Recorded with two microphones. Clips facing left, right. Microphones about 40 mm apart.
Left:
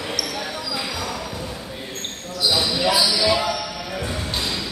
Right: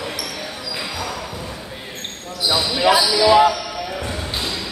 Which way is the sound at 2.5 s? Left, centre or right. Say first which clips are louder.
Right 4 dB; right.